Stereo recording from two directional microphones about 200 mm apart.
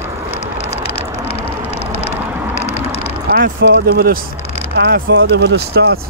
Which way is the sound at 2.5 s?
35° left (ahead or behind).